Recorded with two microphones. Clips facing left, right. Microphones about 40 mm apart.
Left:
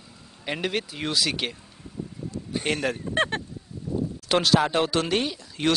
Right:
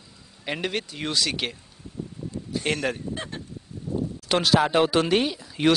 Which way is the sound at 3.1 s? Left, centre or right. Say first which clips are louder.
Left 10 dB; left.